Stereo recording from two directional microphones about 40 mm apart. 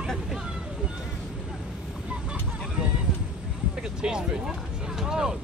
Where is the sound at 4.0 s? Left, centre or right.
Centre.